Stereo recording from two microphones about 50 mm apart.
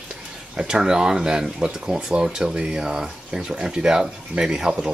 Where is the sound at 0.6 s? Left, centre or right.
Centre.